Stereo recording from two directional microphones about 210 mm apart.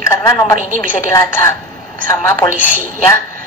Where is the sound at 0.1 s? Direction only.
15° left (ahead or behind).